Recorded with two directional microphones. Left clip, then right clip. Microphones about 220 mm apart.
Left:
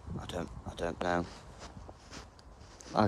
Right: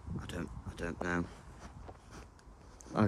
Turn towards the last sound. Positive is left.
turn(degrees=0)  # may be behind; listen again after turning